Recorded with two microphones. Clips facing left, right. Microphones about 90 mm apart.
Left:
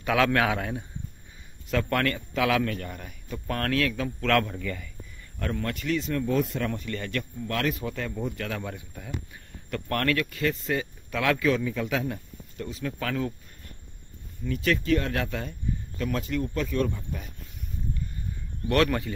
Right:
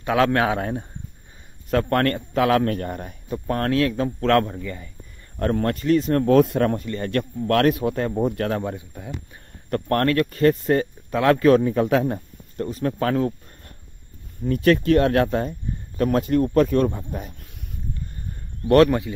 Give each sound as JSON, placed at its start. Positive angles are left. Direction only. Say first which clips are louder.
{"t": 0.0, "sound": "a man's voice", "louder": "right 4 dB", "side_deg": -30}
{"t": 3.3, "sound": "a man's voice", "louder": "right 6 dB", "side_deg": -25}
{"t": 5.4, "sound": "a man's voice", "louder": "right 9 dB", "side_deg": -40}
{"t": 6.1, "sound": "speech", "louder": "right 11 dB", "side_deg": -65}
{"t": 6.6, "sound": "speech", "louder": "right 8 dB", "side_deg": -45}
{"t": 8.5, "sound": "a man's voice", "louder": "right 8 dB", "side_deg": -25}
{"t": 9.7, "sound": "a man's voice", "louder": "right 6 dB", "side_deg": -40}
{"t": 11.4, "sound": "speech", "louder": "right 9 dB", "side_deg": -50}
{"t": 14.4, "sound": "speech", "louder": "right 8 dB", "side_deg": -50}
{"t": 15.2, "sound": "a man's voice", "louder": "right 10 dB", "side_deg": -35}
{"t": 16.0, "sound": "speech", "louder": "right 10 dB", "side_deg": -50}
{"t": 18.9, "sound": "speech", "louder": "right 6 dB", "side_deg": -20}